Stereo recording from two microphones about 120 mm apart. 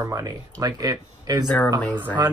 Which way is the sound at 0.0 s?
30° right (ahead or behind).